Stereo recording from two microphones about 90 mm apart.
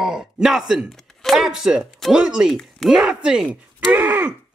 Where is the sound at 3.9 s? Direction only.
20° right (ahead or behind).